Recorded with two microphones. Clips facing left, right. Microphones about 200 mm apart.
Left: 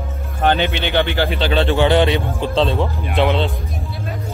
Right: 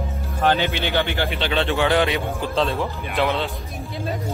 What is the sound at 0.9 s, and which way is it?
Speech, 90° left.